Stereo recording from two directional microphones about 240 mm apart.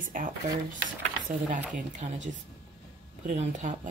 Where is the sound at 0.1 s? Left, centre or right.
Right.